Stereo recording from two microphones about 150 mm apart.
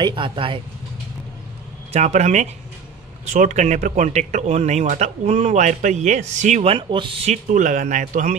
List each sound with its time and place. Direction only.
0.0 s speech: 35° right (ahead or behind)
1.9 s speech: 50° right (ahead or behind)